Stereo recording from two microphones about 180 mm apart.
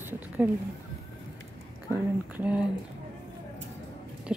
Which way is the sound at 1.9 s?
10° right (ahead or behind).